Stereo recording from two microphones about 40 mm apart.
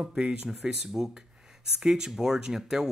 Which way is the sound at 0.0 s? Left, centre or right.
Centre.